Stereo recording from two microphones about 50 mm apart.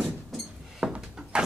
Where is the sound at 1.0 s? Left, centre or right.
Centre.